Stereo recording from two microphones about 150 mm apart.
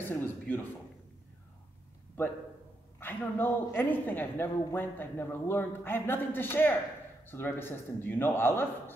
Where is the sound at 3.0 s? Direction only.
15° left (ahead or behind).